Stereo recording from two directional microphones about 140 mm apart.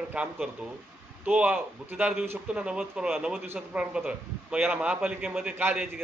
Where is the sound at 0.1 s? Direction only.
10° right (ahead or behind).